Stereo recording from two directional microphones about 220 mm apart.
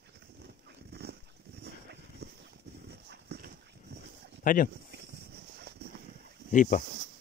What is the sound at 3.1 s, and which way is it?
Horse, 45° right (ahead or behind).